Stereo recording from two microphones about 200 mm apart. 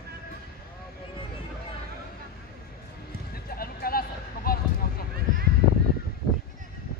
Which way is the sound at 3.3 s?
50° left (ahead or behind).